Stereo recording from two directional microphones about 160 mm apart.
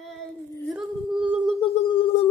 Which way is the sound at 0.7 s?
5° right (ahead or behind).